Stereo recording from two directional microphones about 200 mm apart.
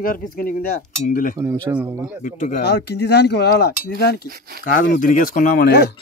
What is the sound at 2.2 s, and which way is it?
Speech, 40° left (ahead or behind).